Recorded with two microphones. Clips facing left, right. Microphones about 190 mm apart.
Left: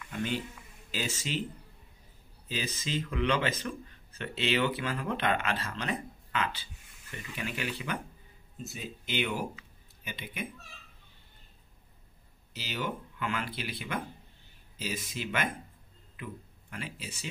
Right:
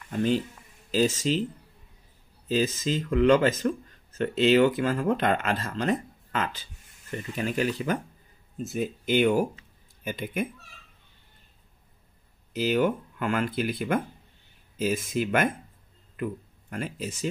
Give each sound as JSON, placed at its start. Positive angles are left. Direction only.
{"t": 0.0, "sound": "speech", "side_deg": -40}
{"t": 2.4, "sound": "speech", "side_deg": -40}
{"t": 12.5, "sound": "speech", "side_deg": -50}